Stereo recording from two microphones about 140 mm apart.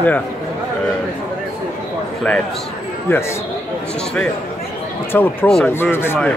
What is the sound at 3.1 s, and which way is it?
Speech, 15° left (ahead or behind).